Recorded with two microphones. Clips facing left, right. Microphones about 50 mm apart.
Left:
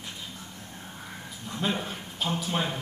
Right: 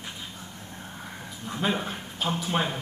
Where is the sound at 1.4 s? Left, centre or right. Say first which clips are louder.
Right 2 dB; centre.